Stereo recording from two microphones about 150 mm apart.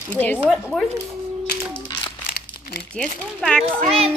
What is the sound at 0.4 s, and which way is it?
Speech, centre (ahead or behind).